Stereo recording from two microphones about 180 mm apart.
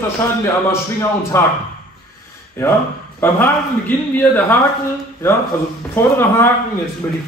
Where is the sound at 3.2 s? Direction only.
10° left (ahead or behind).